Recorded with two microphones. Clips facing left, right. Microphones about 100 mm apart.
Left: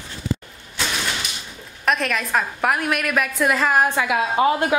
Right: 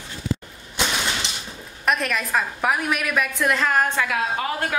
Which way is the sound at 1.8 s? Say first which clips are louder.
Left 1 dB; centre (ahead or behind).